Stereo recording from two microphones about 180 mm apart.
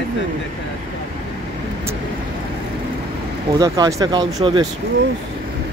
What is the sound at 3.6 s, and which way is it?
Speech, 20° right (ahead or behind).